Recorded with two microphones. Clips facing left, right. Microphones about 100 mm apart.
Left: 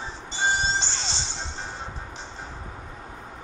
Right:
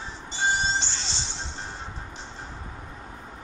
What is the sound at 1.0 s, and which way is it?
Music, 75° left (ahead or behind).